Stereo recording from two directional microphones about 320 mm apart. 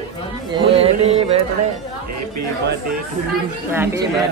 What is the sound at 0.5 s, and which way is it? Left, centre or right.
Speech, centre.